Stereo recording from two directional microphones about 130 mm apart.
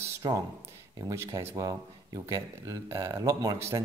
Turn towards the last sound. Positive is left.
turn(degrees=-20)  # may be behind; listen again after turning